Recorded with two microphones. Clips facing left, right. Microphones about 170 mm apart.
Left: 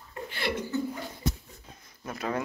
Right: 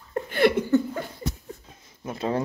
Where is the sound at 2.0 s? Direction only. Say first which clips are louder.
Right 5 dB; 25° right (ahead or behind).